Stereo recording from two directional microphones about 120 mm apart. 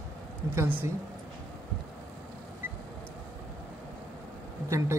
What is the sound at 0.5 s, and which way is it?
Speech, 25° right (ahead or behind).